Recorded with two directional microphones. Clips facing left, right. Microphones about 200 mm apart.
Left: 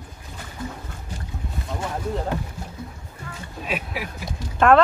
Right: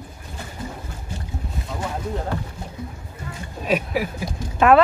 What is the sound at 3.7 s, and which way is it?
Speech, 40° right (ahead or behind).